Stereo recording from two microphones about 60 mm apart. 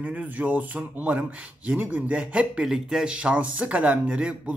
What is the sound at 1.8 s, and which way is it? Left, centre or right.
Speech, right.